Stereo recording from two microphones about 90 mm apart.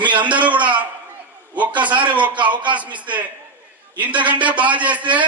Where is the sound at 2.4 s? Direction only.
60° right (ahead or behind).